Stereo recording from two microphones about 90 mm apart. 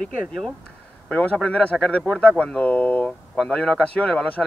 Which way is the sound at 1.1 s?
15° left (ahead or behind).